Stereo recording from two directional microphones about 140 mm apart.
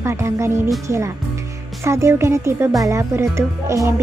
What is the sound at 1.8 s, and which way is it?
Speech, 20° right (ahead or behind).